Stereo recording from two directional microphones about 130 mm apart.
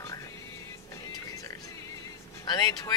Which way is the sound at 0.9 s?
25° left (ahead or behind).